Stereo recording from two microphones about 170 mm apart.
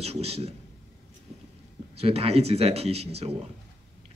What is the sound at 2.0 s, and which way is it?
A man's voice, 35° right (ahead or behind).